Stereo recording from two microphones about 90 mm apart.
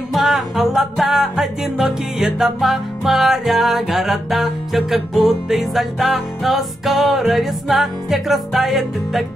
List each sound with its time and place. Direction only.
0.1 s music: centre (ahead or behind)